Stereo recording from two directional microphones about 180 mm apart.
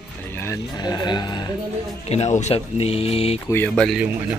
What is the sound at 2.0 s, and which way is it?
Speech, 35° left (ahead or behind).